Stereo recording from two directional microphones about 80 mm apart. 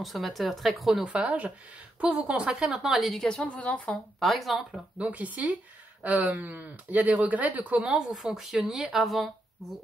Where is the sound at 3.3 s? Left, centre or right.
Centre.